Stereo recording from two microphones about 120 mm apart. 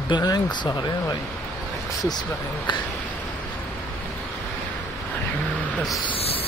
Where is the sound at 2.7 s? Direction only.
40° left (ahead or behind).